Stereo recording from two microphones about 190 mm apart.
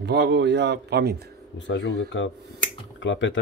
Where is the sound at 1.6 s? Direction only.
70° left (ahead or behind).